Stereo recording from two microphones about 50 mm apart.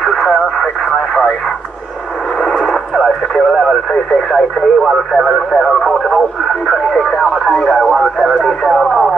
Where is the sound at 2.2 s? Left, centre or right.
Centre.